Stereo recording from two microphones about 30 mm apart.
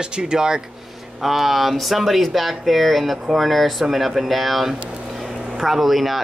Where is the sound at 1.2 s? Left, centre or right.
Centre.